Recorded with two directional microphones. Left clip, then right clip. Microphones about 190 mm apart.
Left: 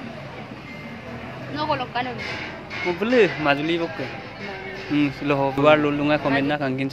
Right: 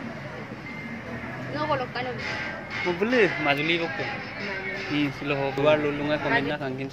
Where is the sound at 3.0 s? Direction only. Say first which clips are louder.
Left 4 dB; 20° left (ahead or behind).